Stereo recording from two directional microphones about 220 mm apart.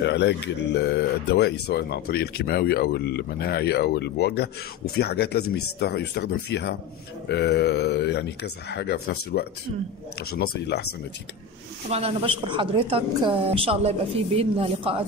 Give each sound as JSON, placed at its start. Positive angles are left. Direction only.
{"t": 0.0, "sound": "speech", "side_deg": 50}
{"t": 11.9, "sound": "a woman's voice", "side_deg": -25}